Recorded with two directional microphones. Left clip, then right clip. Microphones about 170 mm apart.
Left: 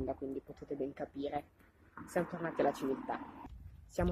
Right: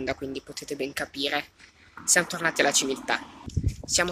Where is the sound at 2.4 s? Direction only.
25° right (ahead or behind).